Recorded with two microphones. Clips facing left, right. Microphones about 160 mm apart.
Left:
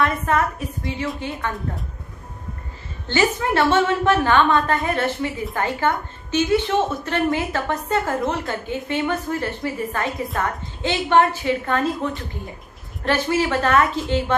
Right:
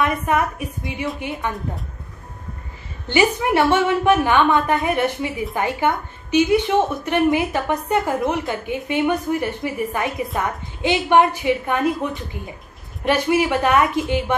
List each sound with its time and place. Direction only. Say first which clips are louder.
0.0 s a woman's voice: right 1 dB; 15° right (ahead or behind)
3.1 s a woman's voice: right 2 dB; 15° right (ahead or behind)